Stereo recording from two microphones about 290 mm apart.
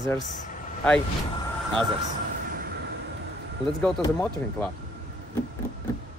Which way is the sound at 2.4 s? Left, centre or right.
Right.